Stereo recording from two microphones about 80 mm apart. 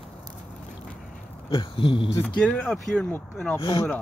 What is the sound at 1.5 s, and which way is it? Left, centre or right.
Speech, left.